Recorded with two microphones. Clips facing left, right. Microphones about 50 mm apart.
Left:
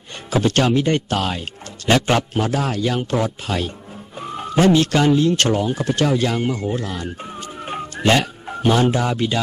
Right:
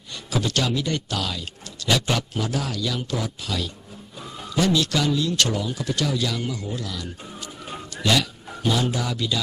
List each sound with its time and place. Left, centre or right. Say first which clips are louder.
0.3 s speech: left 7 dB; left
7.6 s music: left 6 dB; left